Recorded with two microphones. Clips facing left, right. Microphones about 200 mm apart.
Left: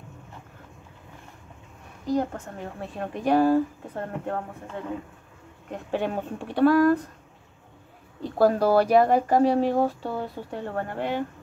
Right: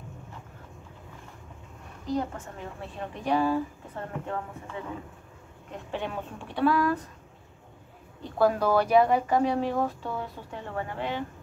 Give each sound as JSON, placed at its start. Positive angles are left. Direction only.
{"t": 2.1, "sound": "a woman's voice", "side_deg": 40}
{"t": 5.7, "sound": "a woman's voice", "side_deg": 45}
{"t": 8.4, "sound": "speech", "side_deg": 35}
{"t": 10.5, "sound": "a woman's voice", "side_deg": 55}